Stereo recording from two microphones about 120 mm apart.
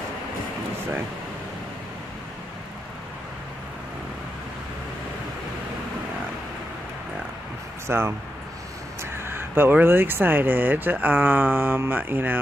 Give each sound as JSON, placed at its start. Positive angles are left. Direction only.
{"t": 7.9, "sound": "speech", "side_deg": -20}
{"t": 9.2, "sound": "speech", "side_deg": -20}